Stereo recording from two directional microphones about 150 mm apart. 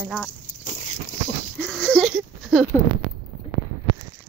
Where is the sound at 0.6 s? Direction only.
50° left (ahead or behind).